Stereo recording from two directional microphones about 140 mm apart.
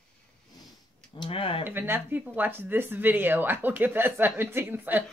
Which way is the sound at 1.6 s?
15° right (ahead or behind).